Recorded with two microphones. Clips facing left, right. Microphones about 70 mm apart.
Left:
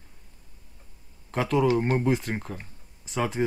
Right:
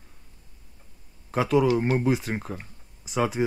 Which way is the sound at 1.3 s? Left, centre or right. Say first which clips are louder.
Right 2 dB; centre.